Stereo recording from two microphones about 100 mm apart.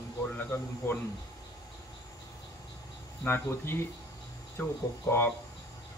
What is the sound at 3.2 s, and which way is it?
Speech, 20° left (ahead or behind).